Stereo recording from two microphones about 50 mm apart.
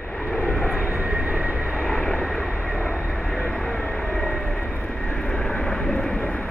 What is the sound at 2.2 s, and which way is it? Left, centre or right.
Vehicle, centre.